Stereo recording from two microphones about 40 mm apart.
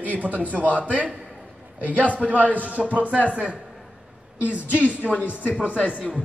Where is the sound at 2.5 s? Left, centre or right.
Right.